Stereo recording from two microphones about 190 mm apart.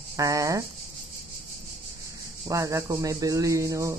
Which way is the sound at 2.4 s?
15° right (ahead or behind).